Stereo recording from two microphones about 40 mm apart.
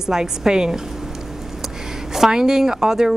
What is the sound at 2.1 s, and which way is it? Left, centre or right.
A woman's voice, centre.